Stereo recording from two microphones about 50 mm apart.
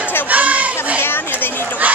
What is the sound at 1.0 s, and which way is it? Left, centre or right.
Chatter, left.